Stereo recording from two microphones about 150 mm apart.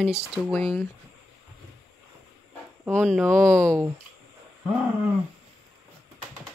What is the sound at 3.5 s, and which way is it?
Speech, 15° right (ahead or behind).